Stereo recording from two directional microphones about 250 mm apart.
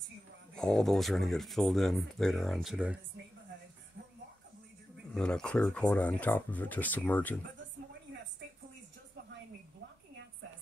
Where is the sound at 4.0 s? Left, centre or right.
Right.